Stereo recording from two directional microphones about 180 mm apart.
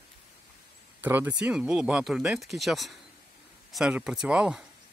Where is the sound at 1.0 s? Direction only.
10° right (ahead or behind).